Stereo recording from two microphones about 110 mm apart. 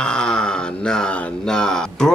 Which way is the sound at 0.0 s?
5° left (ahead or behind).